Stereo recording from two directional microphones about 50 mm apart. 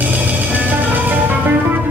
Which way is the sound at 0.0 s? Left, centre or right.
Right.